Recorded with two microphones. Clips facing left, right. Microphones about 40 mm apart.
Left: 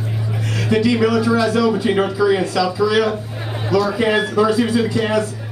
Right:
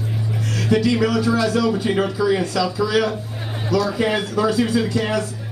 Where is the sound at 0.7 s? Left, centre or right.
Centre.